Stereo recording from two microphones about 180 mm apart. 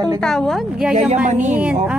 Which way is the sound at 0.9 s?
40° right (ahead or behind).